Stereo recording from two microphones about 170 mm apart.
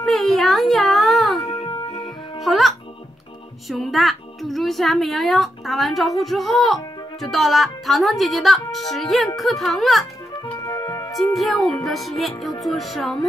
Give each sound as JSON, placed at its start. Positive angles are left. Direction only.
{"t": 0.0, "sound": "a sound", "side_deg": 0}
{"t": 1.5, "sound": "music", "side_deg": 35}
{"t": 2.4, "sound": "music", "side_deg": 0}
{"t": 3.6, "sound": "a child's voice", "side_deg": 0}
{"t": 10.7, "sound": "music", "side_deg": 20}
{"t": 11.1, "sound": "a child's voice", "side_deg": 0}